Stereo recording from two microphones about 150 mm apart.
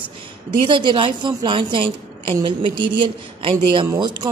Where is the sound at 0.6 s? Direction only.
35° right (ahead or behind).